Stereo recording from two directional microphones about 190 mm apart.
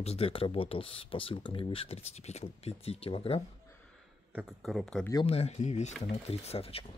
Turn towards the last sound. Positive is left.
turn(degrees=30)  # may be behind; listen again after turning